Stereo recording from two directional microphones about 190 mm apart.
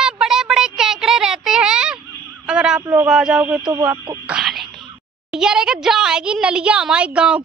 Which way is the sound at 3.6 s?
20° right (ahead or behind).